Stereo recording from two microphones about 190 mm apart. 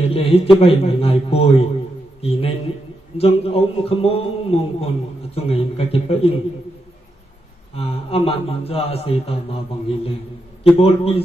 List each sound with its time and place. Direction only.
0.0 s a man's voice: 30° left (ahead or behind)
7.7 s a man's voice: 30° left (ahead or behind)